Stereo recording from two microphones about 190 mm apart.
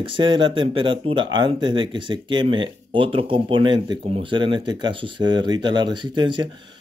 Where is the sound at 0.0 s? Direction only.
25° right (ahead or behind).